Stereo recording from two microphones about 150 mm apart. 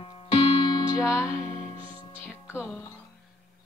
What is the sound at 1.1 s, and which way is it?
Music, 20° left (ahead or behind).